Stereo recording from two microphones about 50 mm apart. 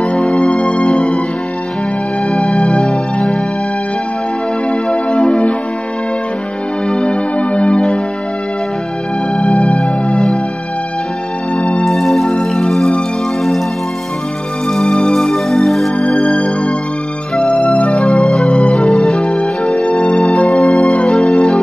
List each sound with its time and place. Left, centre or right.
0.0 s music: left
2.3 s music: left
6.9 s music: centre
9.4 s music: left
9.8 s music: centre
11.5 s music: left
11.8 s music: centre
14.7 s music: centre
16.0 s music: left
17.9 s music: centre
18.6 s music: left
20.5 s music: centre